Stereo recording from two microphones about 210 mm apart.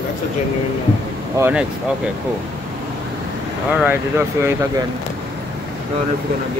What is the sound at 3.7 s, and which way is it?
Speech, 5° right (ahead or behind).